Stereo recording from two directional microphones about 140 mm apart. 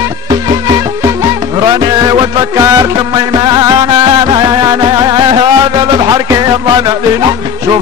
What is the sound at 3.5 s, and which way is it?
Music, 30° right (ahead or behind).